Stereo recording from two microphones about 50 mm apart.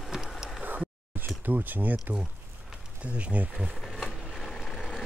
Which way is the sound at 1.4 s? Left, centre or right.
Right.